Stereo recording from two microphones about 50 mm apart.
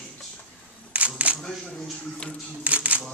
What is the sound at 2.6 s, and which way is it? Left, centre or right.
Speech, right.